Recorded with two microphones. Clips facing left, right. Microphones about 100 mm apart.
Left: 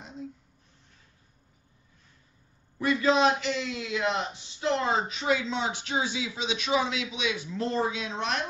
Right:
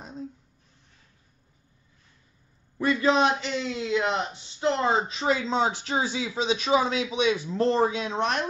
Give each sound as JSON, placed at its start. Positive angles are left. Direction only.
{"t": 3.0, "sound": "speech", "side_deg": -25}